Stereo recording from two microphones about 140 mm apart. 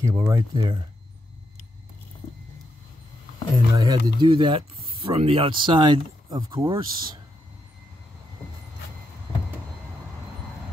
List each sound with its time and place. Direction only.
0.0 s speech: 20° right (ahead or behind)
3.5 s speech: 30° right (ahead or behind)